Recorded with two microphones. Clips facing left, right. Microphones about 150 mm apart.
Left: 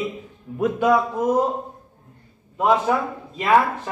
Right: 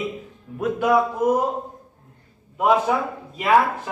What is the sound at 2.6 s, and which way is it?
Speech, 5° right (ahead or behind).